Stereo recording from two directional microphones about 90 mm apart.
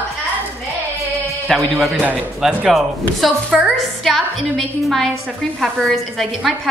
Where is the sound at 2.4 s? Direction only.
10° right (ahead or behind).